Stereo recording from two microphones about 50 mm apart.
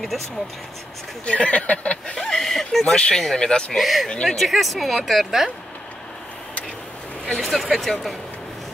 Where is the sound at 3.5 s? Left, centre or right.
Centre.